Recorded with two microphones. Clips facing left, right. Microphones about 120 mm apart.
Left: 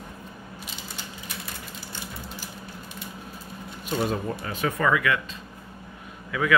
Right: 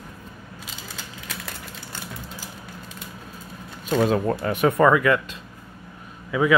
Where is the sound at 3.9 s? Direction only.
90° right; by 5.2 s 40° right (ahead or behind).